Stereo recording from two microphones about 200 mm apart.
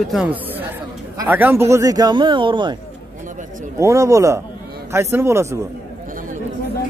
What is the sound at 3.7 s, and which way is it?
Speech, 15° right (ahead or behind).